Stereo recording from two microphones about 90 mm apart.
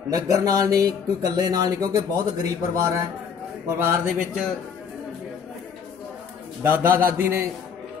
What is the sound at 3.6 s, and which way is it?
Speech, 20° right (ahead or behind).